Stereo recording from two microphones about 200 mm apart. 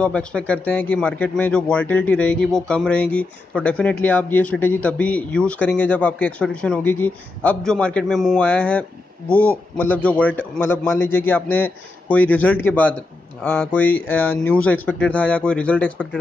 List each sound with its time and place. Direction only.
0.0 s speech: 5° left (ahead or behind)